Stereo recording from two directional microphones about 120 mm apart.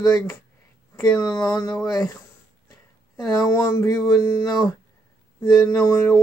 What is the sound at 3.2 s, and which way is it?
Speech, 30° left (ahead or behind).